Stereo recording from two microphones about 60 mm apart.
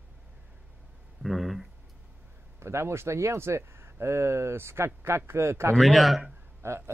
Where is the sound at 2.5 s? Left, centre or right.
Right.